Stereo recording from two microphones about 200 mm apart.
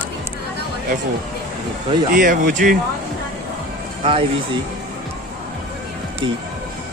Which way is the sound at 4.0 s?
25° right (ahead or behind).